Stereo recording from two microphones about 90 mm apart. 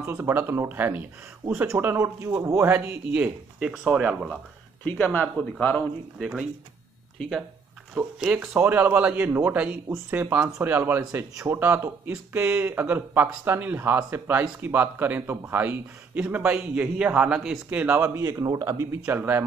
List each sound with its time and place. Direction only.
0.0 s speech: 30° right (ahead or behind); by 4.1 s 10° right (ahead or behind)
4.8 s speech: 20° left (ahead or behind)
6.1 s speech: 10° right (ahead or behind)
8.4 s speech: 25° right (ahead or behind); by 17.6 s 10° right (ahead or behind)
17.6 s speech: 20° right (ahead or behind); by 19.1 s 40° right (ahead or behind)
19.1 s speech: 25° right (ahead or behind)